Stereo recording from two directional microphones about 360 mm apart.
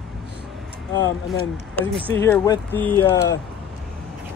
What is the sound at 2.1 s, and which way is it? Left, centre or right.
Speech, centre.